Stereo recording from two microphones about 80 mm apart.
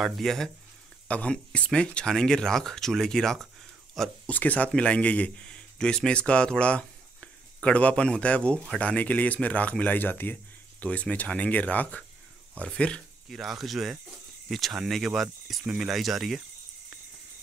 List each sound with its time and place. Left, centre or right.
0.0 s speech: centre
1.0 s a man's voice: centre
4.3 s a man's voice: centre
13.3 s speech: centre
15.6 s speech: centre
15.9 s speech: centre